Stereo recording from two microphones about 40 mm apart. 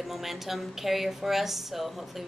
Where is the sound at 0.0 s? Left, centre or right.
Centre.